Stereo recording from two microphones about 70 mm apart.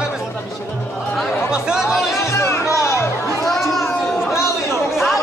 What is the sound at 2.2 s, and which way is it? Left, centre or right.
Music, left.